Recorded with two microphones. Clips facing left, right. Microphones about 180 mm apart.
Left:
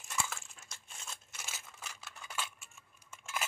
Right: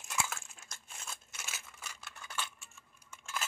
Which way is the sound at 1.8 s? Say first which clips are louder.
Left 1 dB; 5° left (ahead or behind).